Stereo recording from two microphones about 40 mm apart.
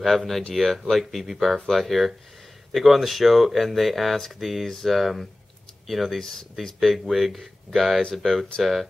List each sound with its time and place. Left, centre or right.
0.0 s speech: centre